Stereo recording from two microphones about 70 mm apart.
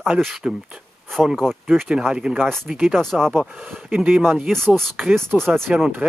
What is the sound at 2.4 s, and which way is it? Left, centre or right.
Speech, centre.